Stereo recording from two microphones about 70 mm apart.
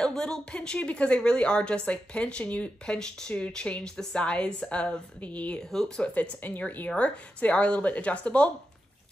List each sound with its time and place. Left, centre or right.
0.0 s a woman's voice: centre
5.6 s a woman's voice: centre
6.1 s speech: left